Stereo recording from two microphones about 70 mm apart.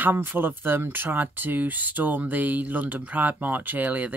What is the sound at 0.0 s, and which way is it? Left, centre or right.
Speech, right.